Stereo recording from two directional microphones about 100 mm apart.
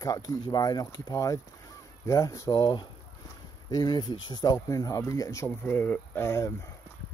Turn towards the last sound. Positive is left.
turn(degrees=30)  # may be behind; listen again after turning